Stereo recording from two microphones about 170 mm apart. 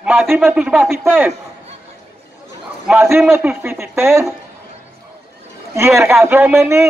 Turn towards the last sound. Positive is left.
turn(degrees=-15)  # may be behind; listen again after turning